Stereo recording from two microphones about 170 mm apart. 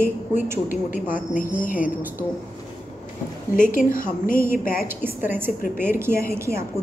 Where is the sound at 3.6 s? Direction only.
50° left (ahead or behind).